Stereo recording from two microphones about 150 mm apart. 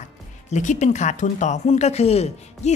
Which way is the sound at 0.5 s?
50° left (ahead or behind).